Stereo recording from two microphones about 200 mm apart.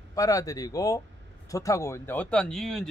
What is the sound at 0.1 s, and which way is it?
Speech, 15° left (ahead or behind).